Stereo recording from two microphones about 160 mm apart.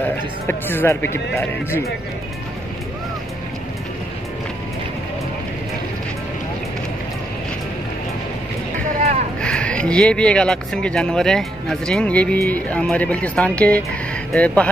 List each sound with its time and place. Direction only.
0.5 s speech: 15° left (ahead or behind)
9.4 s speech: 5° left (ahead or behind)